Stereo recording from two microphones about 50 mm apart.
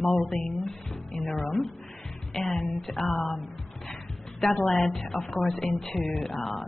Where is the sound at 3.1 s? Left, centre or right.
Left.